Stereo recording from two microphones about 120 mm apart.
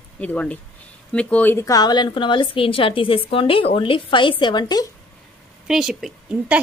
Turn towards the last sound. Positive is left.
turn(degrees=-10)  # may be behind; listen again after turning